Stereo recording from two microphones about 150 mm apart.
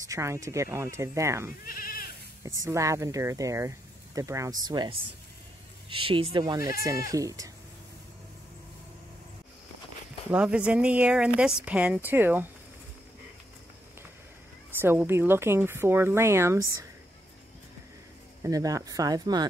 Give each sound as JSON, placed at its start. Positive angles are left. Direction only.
{"t": 0.0, "sound": "speech", "side_deg": -20}
{"t": 1.6, "sound": "goat", "side_deg": 70}
{"t": 2.6, "sound": "speech", "side_deg": -20}
{"t": 6.5, "sound": "speech", "side_deg": -25}
{"t": 10.3, "sound": "speech", "side_deg": -5}
{"t": 14.8, "sound": "speech", "side_deg": -15}
{"t": 18.4, "sound": "speech", "side_deg": -25}